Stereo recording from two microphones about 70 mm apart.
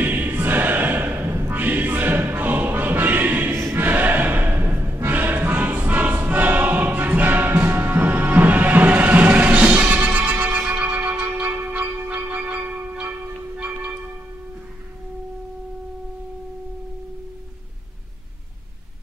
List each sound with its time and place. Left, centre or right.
0.0 s choir: right
10.7 s music: right